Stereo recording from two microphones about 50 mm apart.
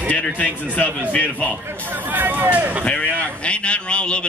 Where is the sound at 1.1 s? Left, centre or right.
Left.